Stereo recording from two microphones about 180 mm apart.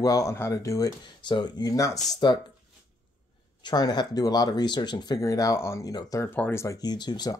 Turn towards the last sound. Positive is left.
turn(degrees=25)  # may be behind; listen again after turning